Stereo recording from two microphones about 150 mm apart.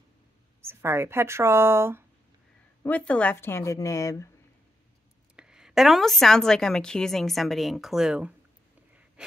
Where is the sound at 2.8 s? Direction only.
10° left (ahead or behind).